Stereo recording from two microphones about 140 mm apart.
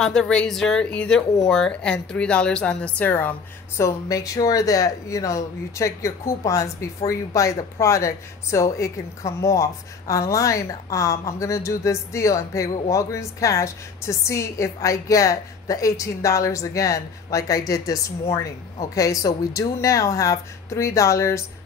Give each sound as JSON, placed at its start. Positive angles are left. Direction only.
{"t": 0.0, "sound": "a woman's voice", "side_deg": 5}